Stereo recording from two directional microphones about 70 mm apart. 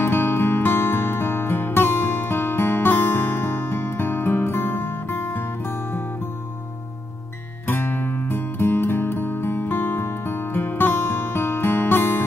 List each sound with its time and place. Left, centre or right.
0.0 s music: left
7.6 s music: left